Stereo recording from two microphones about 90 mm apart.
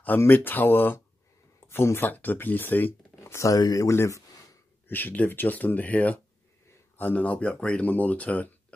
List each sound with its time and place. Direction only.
0.0 s speech: 20° left (ahead or behind)
3.2 s a sound: 30° left (ahead or behind)
3.5 s speech: 45° left (ahead or behind)
4.8 s speech: 20° left (ahead or behind)